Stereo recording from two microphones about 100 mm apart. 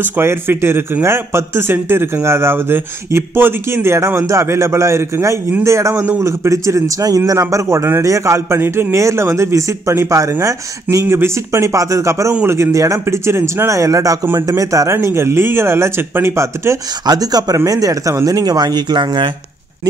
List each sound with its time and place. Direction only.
0.2 s a man's voice: 25° right (ahead or behind)
14.2 s a man's voice: 25° right (ahead or behind)
14.6 s a man's voice: 35° right (ahead or behind)
17.0 s speech: 40° right (ahead or behind)